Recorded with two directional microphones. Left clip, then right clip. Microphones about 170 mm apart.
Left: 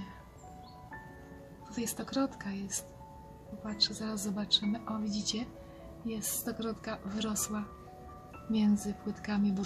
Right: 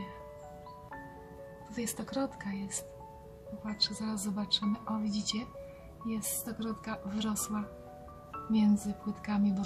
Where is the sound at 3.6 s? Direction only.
5° right (ahead or behind).